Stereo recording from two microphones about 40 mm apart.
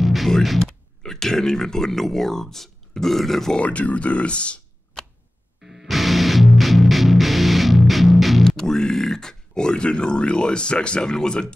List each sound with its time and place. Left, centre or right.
0.0 s music: centre
0.6 s speech: centre
3.5 s speech: left
5.0 s a sound: centre
5.6 s music: centre
8.5 s speech: centre